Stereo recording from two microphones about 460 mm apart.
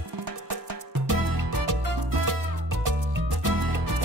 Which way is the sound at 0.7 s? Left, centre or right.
Right.